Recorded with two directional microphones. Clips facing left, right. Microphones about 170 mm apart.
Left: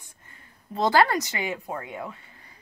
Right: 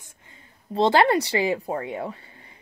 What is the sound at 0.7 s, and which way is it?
Speech, 25° right (ahead or behind).